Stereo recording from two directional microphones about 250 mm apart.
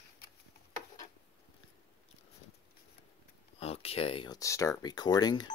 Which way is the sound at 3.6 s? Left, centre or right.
Left.